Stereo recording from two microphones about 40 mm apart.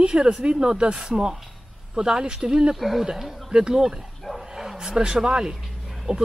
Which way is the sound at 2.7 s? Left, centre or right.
Centre.